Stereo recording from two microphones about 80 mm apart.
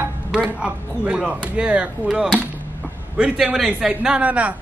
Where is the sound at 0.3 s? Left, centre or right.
Centre.